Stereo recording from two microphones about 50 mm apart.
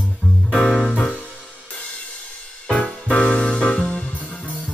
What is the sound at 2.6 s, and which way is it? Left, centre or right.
Music, centre.